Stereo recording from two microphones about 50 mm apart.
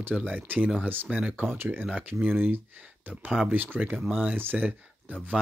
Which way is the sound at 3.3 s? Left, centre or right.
Centre.